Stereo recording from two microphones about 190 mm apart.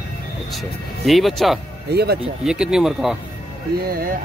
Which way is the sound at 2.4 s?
5° right (ahead or behind).